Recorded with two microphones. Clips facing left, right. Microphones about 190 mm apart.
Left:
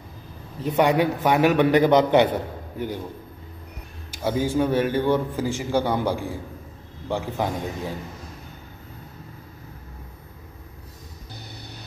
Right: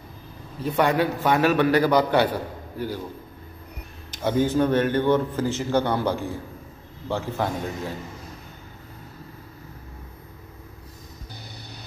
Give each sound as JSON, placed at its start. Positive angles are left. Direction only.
{"t": 0.6, "sound": "a man's voice", "side_deg": 15}
{"t": 4.1, "sound": "a man's voice", "side_deg": 10}